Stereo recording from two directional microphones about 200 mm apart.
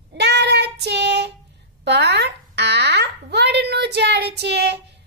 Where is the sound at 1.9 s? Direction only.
55° right (ahead or behind).